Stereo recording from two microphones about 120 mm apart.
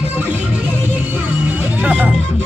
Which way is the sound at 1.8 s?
10° right (ahead or behind).